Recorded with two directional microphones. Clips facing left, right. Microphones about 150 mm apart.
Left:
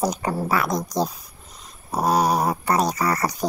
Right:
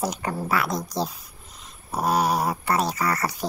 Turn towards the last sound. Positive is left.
turn(degrees=40)  # may be behind; listen again after turning